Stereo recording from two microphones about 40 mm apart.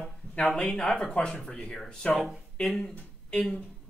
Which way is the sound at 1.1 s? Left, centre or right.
Left.